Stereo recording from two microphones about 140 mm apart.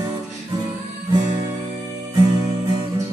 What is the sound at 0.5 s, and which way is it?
Music, 30° right (ahead or behind).